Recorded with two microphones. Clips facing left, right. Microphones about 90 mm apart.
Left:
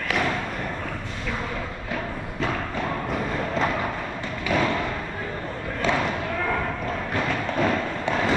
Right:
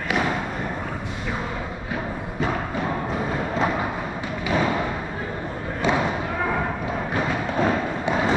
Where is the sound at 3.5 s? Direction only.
15° right (ahead or behind).